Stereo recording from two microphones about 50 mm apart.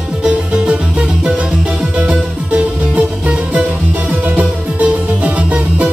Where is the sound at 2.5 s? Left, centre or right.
Right.